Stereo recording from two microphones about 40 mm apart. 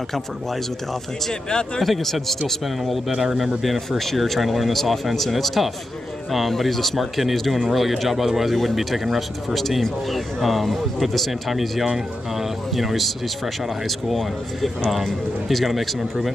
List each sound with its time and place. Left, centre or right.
1.8 s speech: centre
3.1 s speech: centre
14.1 s speech: centre